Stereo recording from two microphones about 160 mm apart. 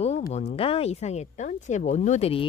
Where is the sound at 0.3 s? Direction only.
40° left (ahead or behind).